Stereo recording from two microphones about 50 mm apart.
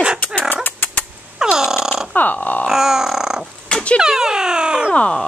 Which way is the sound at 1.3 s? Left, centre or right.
Centre.